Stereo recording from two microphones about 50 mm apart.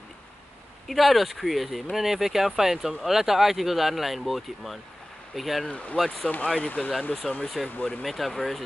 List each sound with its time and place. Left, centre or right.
0.8 s speech: centre
5.7 s speech: left
8.0 s speech: centre